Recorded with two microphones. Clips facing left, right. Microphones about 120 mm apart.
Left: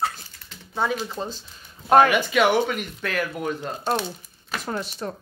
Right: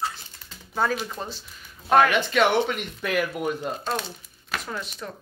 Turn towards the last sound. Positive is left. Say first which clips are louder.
# left 5 dB
turn(degrees=35)  # may be behind; listen again after turning